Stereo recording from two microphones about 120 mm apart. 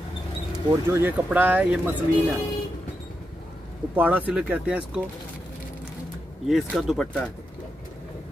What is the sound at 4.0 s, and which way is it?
Speech, 10° right (ahead or behind).